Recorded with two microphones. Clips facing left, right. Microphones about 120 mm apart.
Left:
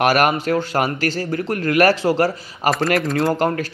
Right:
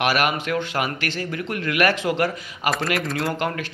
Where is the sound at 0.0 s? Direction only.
45° left (ahead or behind).